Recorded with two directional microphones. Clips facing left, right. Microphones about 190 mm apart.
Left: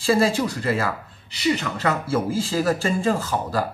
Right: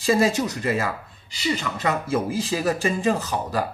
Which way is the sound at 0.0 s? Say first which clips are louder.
Left 1 dB; 20° right (ahead or behind).